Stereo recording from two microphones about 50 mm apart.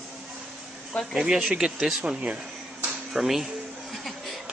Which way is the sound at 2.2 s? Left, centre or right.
Right.